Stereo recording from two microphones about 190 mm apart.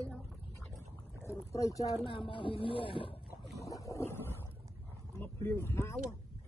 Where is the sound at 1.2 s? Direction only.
15° left (ahead or behind).